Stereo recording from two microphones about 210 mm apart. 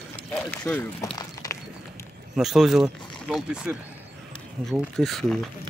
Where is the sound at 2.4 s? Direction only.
Centre (ahead or behind).